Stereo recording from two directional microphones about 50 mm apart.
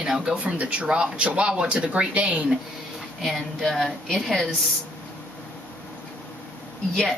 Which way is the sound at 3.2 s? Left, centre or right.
Centre.